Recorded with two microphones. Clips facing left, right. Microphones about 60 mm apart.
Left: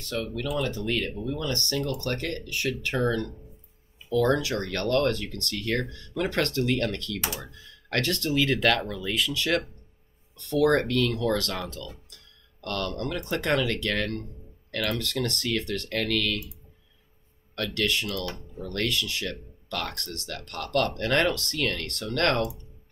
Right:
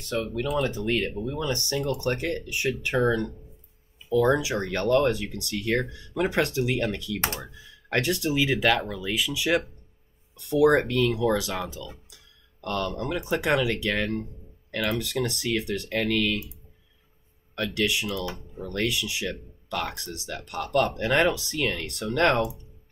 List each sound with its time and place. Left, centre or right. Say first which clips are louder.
0.0 s speech: right 3 dB; centre
17.6 s speech: right 1 dB; centre